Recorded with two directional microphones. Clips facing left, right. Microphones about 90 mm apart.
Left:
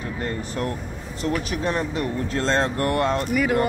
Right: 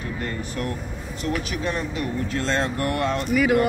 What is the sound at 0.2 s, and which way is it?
Speech, 35° left (ahead or behind).